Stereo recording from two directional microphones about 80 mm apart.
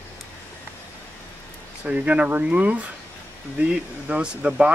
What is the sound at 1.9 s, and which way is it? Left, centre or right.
Speech, centre.